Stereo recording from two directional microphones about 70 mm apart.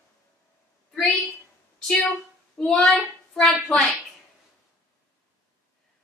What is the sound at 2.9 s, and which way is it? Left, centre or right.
Speech, centre.